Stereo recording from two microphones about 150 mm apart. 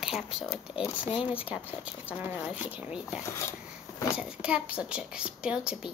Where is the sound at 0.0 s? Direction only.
Centre (ahead or behind).